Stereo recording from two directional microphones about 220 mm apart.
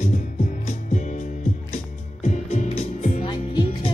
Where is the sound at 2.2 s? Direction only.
30° left (ahead or behind).